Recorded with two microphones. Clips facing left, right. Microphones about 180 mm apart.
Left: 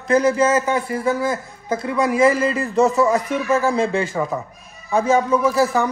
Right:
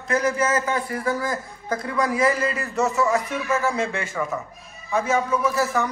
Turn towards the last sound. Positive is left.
turn(degrees=30)  # may be behind; listen again after turning